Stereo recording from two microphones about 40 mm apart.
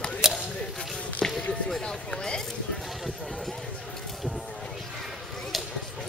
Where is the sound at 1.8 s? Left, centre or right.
Centre.